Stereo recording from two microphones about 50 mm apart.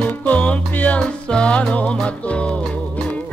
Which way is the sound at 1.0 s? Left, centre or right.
Centre.